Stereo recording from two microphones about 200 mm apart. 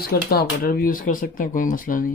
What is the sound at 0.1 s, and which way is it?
Speech, 50° left (ahead or behind).